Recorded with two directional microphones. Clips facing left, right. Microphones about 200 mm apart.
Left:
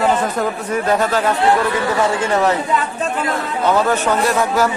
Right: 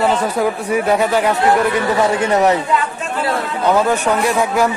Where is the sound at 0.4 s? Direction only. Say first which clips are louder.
Right 3 dB; 10° right (ahead or behind).